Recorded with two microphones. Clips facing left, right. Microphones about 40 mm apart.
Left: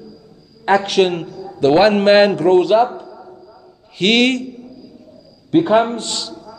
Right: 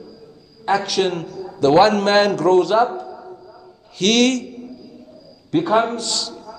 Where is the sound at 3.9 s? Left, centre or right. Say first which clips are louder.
Left 2 dB; left.